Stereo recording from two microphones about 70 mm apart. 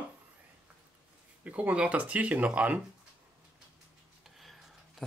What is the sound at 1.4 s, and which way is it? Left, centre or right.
Speech, right.